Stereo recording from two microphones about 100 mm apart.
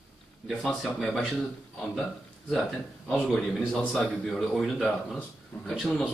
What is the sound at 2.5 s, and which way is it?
A man's voice, 5° left (ahead or behind).